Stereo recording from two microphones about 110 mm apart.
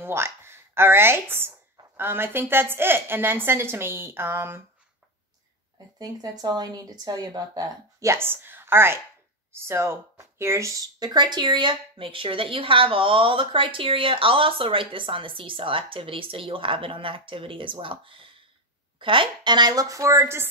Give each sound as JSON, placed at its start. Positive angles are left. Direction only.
{"t": 0.0, "sound": "a woman's voice", "side_deg": -20}
{"t": 5.9, "sound": "speech", "side_deg": -40}
{"t": 11.0, "sound": "speech", "side_deg": -40}